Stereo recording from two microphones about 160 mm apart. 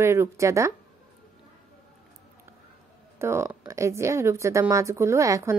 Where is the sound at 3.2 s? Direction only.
15° right (ahead or behind).